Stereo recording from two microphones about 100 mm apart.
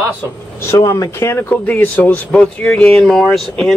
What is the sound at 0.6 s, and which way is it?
Speech, 30° left (ahead or behind).